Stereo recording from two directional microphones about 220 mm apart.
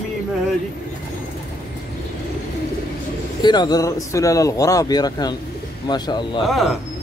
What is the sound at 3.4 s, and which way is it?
Speech, 20° left (ahead or behind).